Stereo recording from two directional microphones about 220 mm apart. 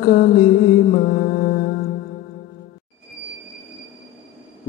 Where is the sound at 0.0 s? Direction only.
40° left (ahead or behind).